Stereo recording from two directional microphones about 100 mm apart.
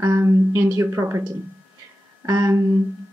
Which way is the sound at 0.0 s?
30° right (ahead or behind).